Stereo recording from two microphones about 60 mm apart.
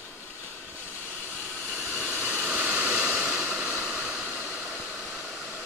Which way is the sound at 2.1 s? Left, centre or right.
Right.